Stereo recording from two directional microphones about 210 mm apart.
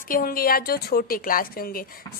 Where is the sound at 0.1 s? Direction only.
45° left (ahead or behind).